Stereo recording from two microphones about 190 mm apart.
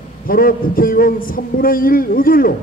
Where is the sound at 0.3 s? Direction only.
50° left (ahead or behind).